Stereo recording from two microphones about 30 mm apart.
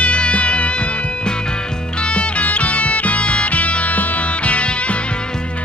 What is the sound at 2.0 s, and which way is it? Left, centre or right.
Music, left.